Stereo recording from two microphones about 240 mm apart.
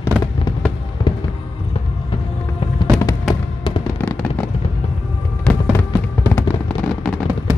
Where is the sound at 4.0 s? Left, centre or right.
Centre.